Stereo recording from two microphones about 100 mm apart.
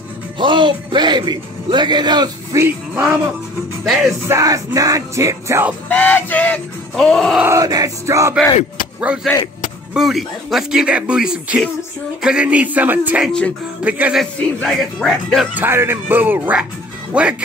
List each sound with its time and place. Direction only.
0.4 s speech: 55° right (ahead or behind)
2.5 s music: 35° right (ahead or behind)
3.8 s speech: centre (ahead or behind)
4.3 s music: 35° right (ahead or behind)
5.9 s music: 15° left (ahead or behind)
7.0 s speech: 5° left (ahead or behind)
7.4 s music: 35° right (ahead or behind)
9.1 s speech: 10° right (ahead or behind)
14.1 s speech: centre (ahead or behind)
15.5 s speech: 20° right (ahead or behind)